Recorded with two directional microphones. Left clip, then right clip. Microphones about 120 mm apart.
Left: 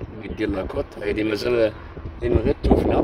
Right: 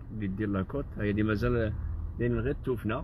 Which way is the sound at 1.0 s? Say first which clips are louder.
Left 7 dB; 25° left (ahead or behind).